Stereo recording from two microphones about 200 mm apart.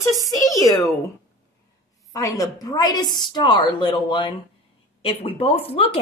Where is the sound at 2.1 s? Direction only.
15° left (ahead or behind).